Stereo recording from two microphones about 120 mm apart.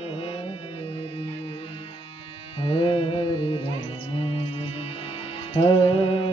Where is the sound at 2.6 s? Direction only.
50° left (ahead or behind).